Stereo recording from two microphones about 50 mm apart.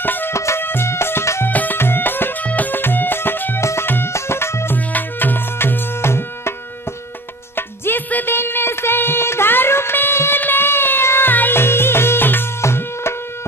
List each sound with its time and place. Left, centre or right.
0.0 s music: left
0.3 s music: left
0.6 s music: left
1.5 s music: left
1.8 s music: left
2.4 s music: left
4.1 s music: left
4.7 s music: left
7.5 s music: left
10.4 s a sound: left
11.3 s music: left
12.6 s music: left